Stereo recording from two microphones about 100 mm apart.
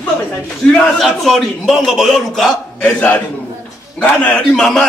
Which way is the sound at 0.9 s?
Centre (ahead or behind).